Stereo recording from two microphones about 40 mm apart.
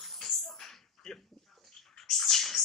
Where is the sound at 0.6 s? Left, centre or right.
Centre.